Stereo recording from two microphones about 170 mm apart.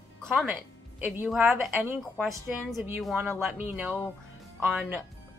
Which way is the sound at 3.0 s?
5° right (ahead or behind).